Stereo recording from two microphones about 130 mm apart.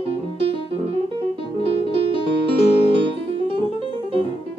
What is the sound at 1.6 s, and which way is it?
Music, 45° left (ahead or behind).